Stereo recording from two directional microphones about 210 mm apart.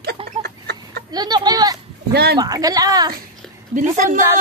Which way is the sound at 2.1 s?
50° right (ahead or behind).